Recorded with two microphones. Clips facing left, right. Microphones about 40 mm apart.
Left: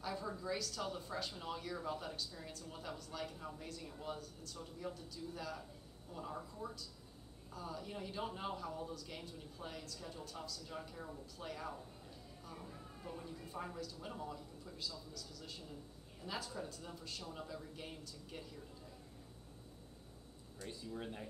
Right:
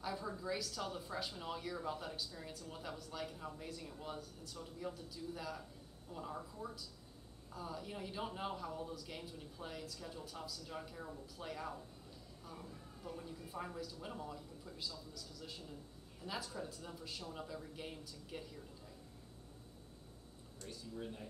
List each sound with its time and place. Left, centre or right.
0.0 s a man's voice: centre
12.6 s a sound: centre
13.5 s a man's voice: centre
20.6 s speech: left